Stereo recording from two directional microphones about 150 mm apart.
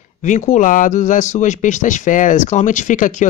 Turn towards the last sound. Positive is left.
turn(degrees=55)  # may be behind; listen again after turning